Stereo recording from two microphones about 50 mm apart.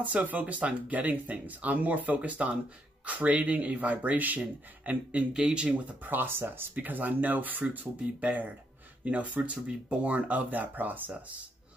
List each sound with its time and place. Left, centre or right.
0.0 s speech: right
5.3 s speech: centre
6.0 s speech: right
6.7 s speech: right